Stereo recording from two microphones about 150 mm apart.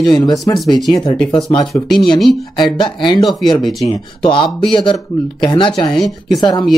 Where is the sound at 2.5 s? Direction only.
30° left (ahead or behind).